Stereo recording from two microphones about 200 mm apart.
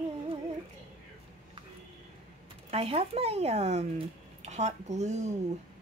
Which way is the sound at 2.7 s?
30° right (ahead or behind).